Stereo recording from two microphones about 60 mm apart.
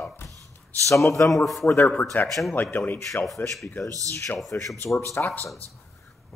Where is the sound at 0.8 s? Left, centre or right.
Left.